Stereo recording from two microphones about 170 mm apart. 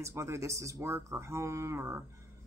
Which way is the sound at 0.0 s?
15° right (ahead or behind).